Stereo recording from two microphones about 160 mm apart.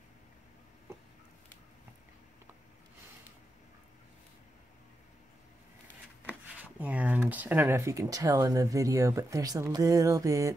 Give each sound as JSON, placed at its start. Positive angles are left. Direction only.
{"t": 6.2, "sound": "speech", "side_deg": -10}